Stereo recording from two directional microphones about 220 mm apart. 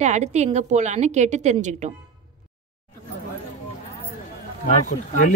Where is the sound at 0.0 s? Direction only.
30° right (ahead or behind).